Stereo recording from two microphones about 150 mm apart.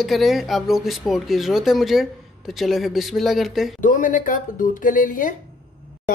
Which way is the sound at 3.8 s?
60° left (ahead or behind).